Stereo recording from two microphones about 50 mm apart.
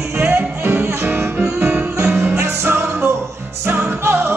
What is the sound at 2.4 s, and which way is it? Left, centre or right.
Music, right.